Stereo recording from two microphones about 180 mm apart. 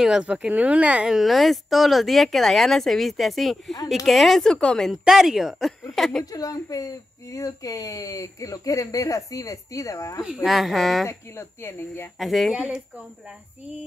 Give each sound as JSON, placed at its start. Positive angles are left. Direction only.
{"t": 0.0, "sound": "a woman's voice", "side_deg": -5}
{"t": 6.3, "sound": "speech", "side_deg": 20}
{"t": 10.2, "sound": "a woman's voice", "side_deg": 0}
{"t": 11.1, "sound": "speech", "side_deg": 15}
{"t": 12.2, "sound": "a woman's voice", "side_deg": 0}